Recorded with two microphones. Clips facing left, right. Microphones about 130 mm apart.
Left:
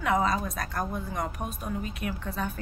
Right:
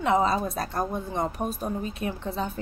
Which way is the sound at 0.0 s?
30° right (ahead or behind).